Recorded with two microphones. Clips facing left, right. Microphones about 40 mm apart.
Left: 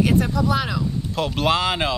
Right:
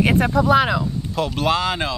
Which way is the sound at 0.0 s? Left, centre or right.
Right.